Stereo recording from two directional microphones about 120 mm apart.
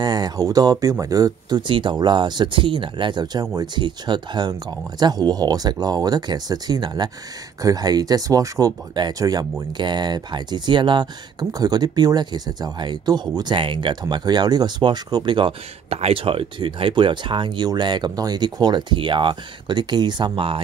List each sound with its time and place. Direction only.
0.0 s speech: 35° right (ahead or behind)
15.9 s speech: 55° right (ahead or behind)